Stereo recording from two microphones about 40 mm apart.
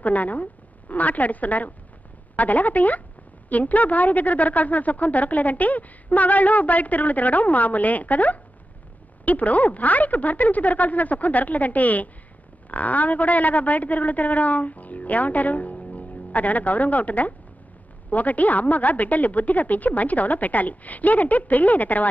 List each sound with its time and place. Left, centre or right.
0.0 s a woman's voice: left